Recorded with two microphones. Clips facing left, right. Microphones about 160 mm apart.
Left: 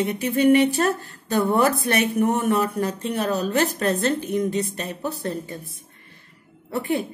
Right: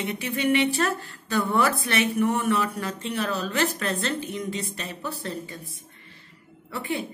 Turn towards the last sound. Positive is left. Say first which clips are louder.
# left 6 dB
turn(degrees=45)  # may be behind; listen again after turning